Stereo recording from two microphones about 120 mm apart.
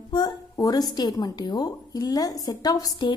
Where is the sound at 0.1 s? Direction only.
35° left (ahead or behind).